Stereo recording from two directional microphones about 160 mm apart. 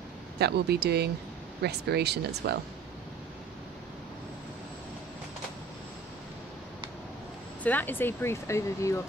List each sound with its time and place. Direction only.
0.4 s speech: 90° right
7.6 s speech: 10° left (ahead or behind)